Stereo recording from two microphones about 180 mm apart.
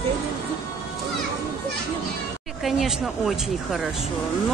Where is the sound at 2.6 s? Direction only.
Centre (ahead or behind).